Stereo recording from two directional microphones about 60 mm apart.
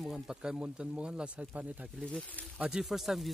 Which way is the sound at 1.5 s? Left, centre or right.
Right.